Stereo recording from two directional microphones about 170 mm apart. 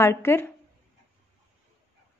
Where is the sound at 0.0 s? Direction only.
15° left (ahead or behind).